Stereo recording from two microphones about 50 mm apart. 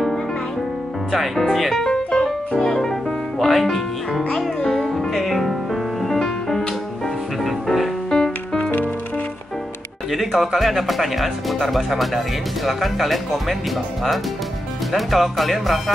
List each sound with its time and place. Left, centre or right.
1.1 s speech: centre
2.5 s music: centre
6.1 s music: centre
7.4 s music: centre
8.1 s music: centre
8.6 s music: left
10.1 s speech: centre
14.9 s speech: centre